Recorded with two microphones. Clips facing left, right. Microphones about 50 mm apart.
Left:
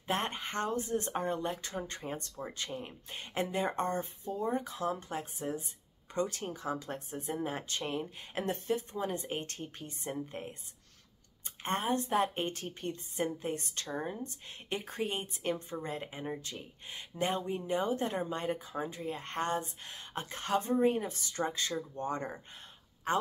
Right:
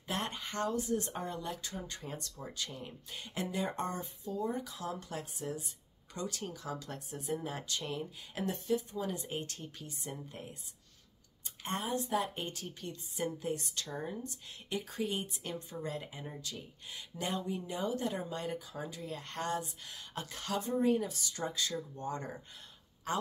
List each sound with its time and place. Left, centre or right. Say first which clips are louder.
0.1 s a woman's voice: left 4 dB; left
11.6 s a woman's voice: left 4 dB; left